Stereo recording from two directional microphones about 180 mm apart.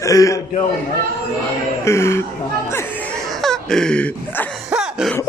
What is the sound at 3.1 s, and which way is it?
Laughter, 5° left (ahead or behind).